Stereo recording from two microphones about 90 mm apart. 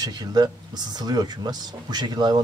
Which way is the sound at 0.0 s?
50° right (ahead or behind).